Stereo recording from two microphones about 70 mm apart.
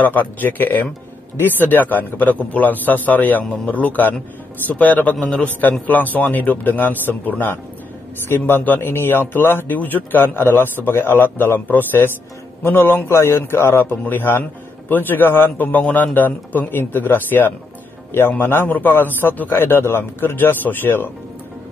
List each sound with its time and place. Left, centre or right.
0.0 s a man's voice: left